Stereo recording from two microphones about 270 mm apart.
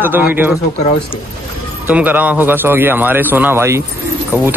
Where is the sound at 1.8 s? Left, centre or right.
Centre.